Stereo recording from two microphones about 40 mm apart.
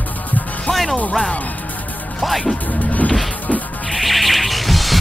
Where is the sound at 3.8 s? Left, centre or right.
Centre.